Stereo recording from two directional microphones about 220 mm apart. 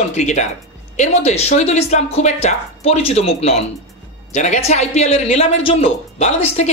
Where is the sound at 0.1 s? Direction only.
30° left (ahead or behind).